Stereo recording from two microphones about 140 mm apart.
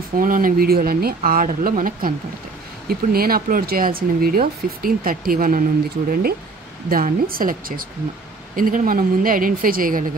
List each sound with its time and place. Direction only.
0.1 s speech: 80° right